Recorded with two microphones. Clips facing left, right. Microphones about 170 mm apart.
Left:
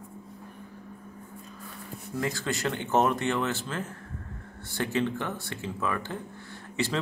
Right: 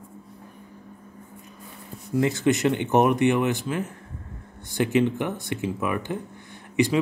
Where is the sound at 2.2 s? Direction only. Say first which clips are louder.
Right 9 dB; 20° right (ahead or behind).